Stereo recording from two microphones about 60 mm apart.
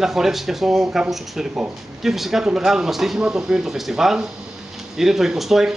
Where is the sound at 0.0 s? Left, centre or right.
Centre.